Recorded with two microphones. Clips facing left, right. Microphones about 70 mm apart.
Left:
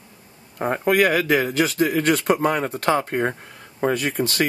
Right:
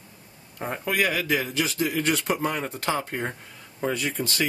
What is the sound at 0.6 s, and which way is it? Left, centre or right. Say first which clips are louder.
Speech: left 7 dB; left.